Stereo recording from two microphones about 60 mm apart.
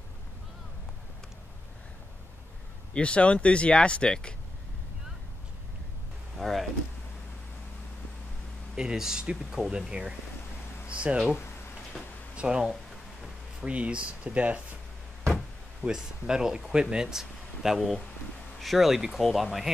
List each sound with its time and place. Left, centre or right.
2.9 s speech: centre
6.3 s a sound: centre
8.7 s speech: centre
12.4 s speech: centre
15.8 s speech: centre